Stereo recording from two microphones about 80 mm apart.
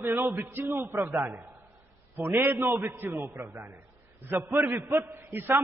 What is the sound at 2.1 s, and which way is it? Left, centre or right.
A man's voice, right.